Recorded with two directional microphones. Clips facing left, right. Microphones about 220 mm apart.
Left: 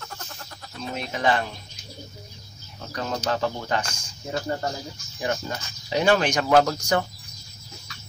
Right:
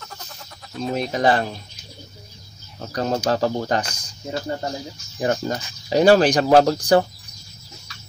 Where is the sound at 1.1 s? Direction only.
35° right (ahead or behind).